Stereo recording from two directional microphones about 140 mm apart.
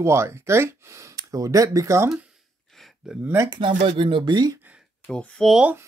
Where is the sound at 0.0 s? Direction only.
20° right (ahead or behind).